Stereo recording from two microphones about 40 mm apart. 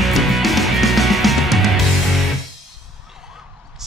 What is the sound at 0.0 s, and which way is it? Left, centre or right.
Music, centre.